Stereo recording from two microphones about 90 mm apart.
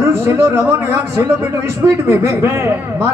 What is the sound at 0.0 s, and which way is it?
A man's voice, 25° right (ahead or behind).